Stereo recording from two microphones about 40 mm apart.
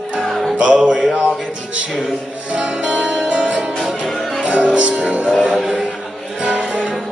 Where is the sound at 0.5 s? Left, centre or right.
Right.